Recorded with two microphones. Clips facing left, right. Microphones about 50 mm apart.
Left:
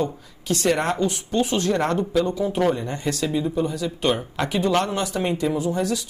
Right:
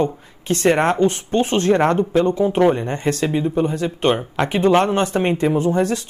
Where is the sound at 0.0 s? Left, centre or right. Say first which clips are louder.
Right 5 dB; right.